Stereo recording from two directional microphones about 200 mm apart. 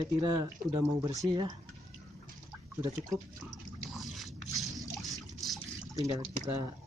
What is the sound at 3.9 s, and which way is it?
Squish, centre (ahead or behind).